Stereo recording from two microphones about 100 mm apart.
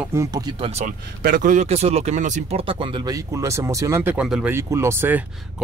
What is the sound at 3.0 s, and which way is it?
Speech, 35° right (ahead or behind).